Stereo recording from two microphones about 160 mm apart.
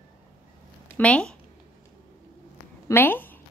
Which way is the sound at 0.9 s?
5° left (ahead or behind).